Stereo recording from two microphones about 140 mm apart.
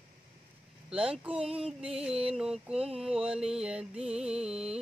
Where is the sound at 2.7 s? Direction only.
45° right (ahead or behind).